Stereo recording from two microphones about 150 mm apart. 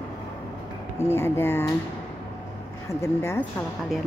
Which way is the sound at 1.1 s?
15° left (ahead or behind).